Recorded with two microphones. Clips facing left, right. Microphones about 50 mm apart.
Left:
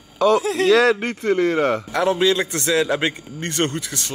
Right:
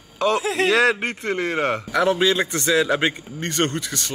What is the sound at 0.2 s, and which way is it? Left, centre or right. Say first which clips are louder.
Speech: left 3 dB; right.